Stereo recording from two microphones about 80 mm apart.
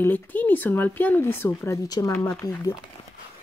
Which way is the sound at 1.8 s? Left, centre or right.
Left.